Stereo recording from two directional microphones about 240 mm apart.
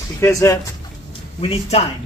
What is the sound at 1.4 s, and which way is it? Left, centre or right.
Speech, left.